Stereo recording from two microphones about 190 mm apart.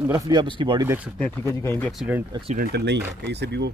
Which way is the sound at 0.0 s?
20° right (ahead or behind).